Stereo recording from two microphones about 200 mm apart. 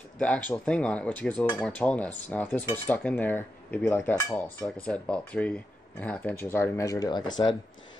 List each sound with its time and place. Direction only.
0.2 s speech: 5° left (ahead or behind)